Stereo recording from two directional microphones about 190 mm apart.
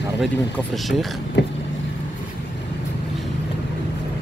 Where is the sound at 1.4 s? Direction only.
70° left (ahead or behind).